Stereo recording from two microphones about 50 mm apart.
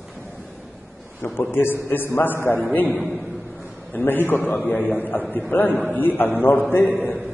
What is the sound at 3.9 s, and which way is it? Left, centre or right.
A man's voice, left.